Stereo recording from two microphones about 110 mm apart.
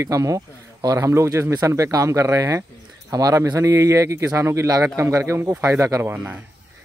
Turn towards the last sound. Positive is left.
turn(degrees=-25)  # may be behind; listen again after turning